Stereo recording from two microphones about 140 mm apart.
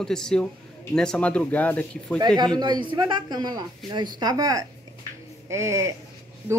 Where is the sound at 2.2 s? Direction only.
30° right (ahead or behind).